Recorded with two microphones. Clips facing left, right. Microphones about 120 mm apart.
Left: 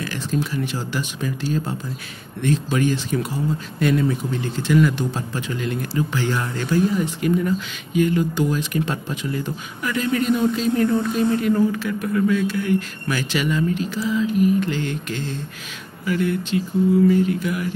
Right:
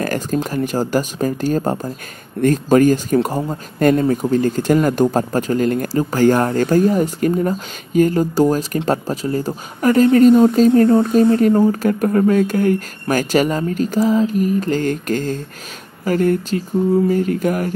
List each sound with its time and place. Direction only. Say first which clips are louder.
0.0 s speech: right 5 dB; 45° right (ahead or behind)